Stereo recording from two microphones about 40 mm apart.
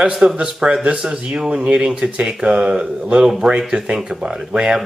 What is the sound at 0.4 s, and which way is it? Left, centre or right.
Speech, right.